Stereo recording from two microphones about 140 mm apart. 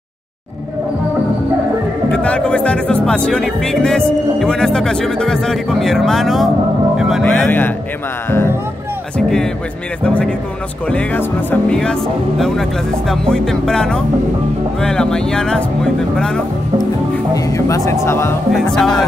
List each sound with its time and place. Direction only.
2.1 s speech: 10° left (ahead or behind)
10.0 s speech: 5° left (ahead or behind)
17.3 s speech: 25° left (ahead or behind)
18.5 s speech: 5° left (ahead or behind)